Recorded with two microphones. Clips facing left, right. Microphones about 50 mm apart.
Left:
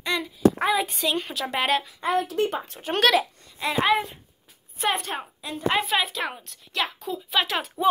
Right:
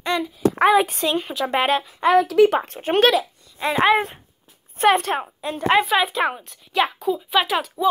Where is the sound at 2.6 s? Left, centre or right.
Right.